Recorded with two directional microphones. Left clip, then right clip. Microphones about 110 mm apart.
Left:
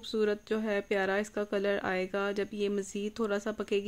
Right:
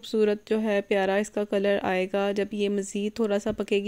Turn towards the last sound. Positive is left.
turn(degrees=-40)  # may be behind; listen again after turning